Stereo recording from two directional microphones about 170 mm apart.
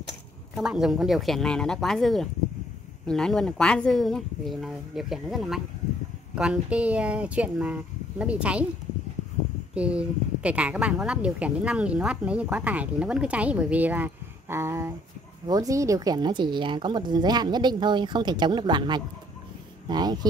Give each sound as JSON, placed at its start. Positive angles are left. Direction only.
{"t": 0.6, "sound": "a woman's voice", "side_deg": -5}
{"t": 9.8, "sound": "a woman's voice", "side_deg": -5}